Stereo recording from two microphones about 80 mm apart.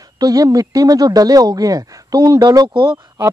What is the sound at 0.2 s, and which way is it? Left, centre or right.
Speech, right.